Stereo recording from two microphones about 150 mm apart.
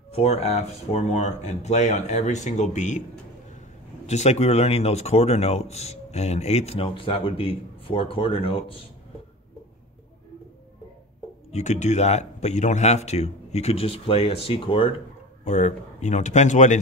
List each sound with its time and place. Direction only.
0.1 s speech: 45° left (ahead or behind)
4.0 s speech: 50° left (ahead or behind)
11.5 s speech: 50° left (ahead or behind)
15.4 s speech: 50° left (ahead or behind)